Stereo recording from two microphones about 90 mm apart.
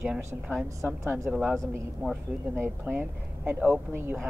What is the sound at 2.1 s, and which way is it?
A woman's voice, 20° right (ahead or behind).